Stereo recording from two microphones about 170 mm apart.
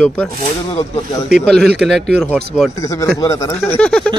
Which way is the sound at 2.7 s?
20° left (ahead or behind).